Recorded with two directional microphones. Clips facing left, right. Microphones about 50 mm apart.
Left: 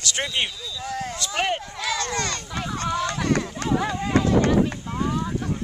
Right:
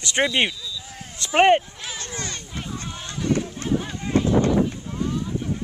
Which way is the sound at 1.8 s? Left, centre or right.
Left.